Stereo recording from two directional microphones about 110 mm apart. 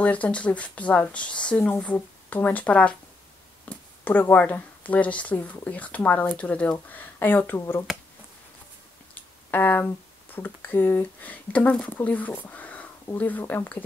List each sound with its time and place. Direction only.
0.0 s speech: 10° left (ahead or behind)
9.1 s speech: 15° left (ahead or behind)